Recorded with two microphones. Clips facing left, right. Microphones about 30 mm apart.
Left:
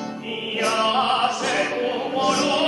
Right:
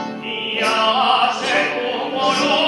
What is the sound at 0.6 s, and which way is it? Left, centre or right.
Opera, right.